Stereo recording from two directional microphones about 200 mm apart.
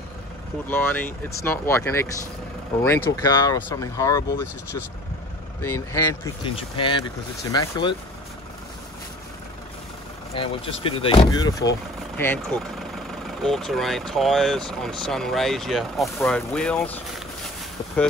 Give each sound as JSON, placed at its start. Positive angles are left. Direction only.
{"t": 0.7, "sound": "speech", "side_deg": 10}
{"t": 6.4, "sound": "speech", "side_deg": 25}
{"t": 10.3, "sound": "speech", "side_deg": 30}
{"t": 12.2, "sound": "speech", "side_deg": 5}